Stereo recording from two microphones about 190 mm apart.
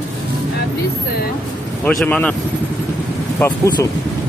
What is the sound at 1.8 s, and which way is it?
Speech, 5° left (ahead or behind).